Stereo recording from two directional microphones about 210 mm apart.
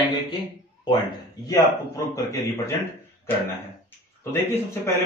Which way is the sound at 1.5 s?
15° left (ahead or behind).